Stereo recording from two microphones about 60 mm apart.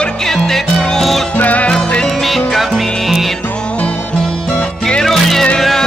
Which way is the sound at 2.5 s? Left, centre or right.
Centre.